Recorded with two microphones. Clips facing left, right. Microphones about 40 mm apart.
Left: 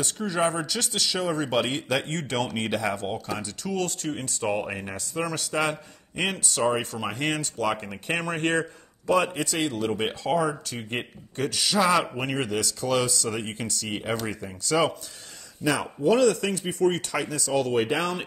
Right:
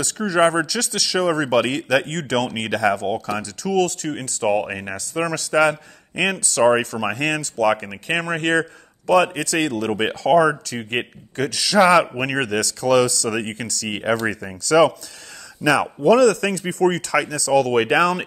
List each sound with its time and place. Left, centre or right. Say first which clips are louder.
0.0 s speech: right 8 dB; right
4.4 s speech: right 8 dB; right
4.9 s a man's voice: right 7 dB; right
7.5 s a man's voice: right 8 dB; right
7.8 s speech: right 5 dB; right
8.2 s a man's voice: right 6 dB; right
9.9 s a man's voice: right 13 dB; right
10.8 s speech: right 7 dB; right
11.3 s a man's voice: right 7 dB; right
13.8 s a man's voice: right 9 dB; right
14.3 s speech: right 8 dB; right